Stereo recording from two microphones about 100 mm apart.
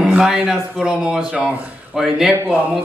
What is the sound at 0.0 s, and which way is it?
Speech, 5° right (ahead or behind).